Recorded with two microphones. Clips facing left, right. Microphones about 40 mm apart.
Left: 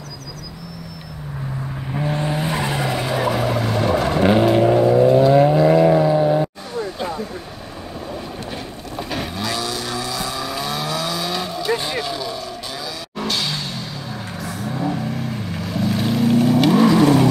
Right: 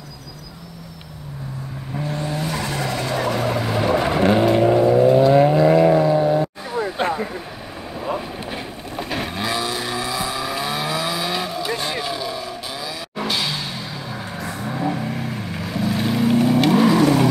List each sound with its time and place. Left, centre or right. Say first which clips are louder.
2.0 s vehicle: left 3 dB; left; by 4.2 s centre
4.2 s vehicle: left 2 dB; centre
7.0 s a sound: right 4 dB; right
8.5 s vehicle: even; centre
9.4 s vehicle: right 2 dB; right
11.8 s a sound: even; centre
13.2 s music: even; centre
14.4 s vehicle: even; centre